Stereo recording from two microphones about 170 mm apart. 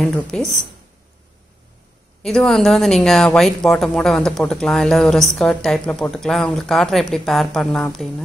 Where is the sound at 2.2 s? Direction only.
5° left (ahead or behind).